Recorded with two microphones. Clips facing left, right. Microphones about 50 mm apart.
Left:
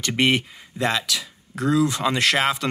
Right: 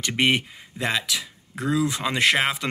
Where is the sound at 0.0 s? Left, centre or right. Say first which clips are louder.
Left 1 dB; centre.